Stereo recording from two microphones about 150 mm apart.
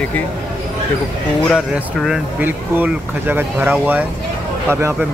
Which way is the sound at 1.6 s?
5° right (ahead or behind).